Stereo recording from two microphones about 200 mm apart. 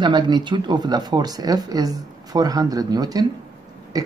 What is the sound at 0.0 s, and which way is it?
Speech, 20° right (ahead or behind).